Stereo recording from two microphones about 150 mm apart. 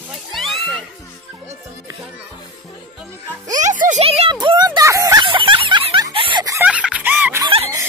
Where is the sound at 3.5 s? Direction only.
55° right (ahead or behind).